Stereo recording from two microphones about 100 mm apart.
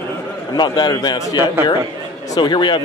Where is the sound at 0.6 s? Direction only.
45° left (ahead or behind).